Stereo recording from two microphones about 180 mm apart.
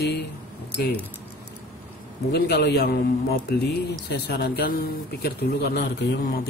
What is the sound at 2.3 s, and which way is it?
Speech, 65° left (ahead or behind).